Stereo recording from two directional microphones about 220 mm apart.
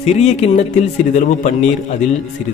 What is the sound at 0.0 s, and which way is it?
Speech, 30° left (ahead or behind).